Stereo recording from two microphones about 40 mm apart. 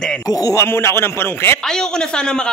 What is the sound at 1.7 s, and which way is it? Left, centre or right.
Speech, centre.